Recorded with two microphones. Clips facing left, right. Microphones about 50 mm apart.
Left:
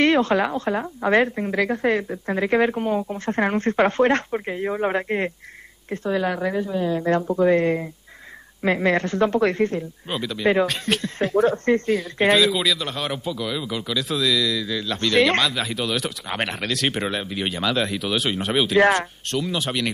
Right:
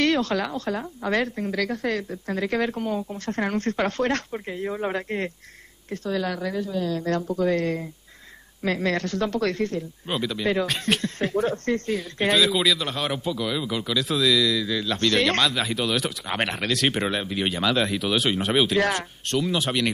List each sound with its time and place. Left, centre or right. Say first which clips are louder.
0.0 s a woman's voice: left 4 dB; left
10.0 s speech: even; centre
10.4 s a woman's voice: left 6 dB; left
10.7 s speech: even; centre
11.5 s a woman's voice: left 5 dB; left
12.2 s speech: left 2 dB; centre